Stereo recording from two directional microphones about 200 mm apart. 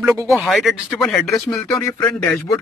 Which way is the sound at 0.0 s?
15° right (ahead or behind).